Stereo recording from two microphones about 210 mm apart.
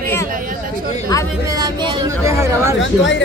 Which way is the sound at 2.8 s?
60° left (ahead or behind).